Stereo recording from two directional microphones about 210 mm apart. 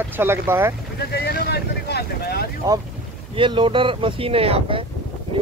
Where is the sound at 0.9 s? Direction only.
50° left (ahead or behind).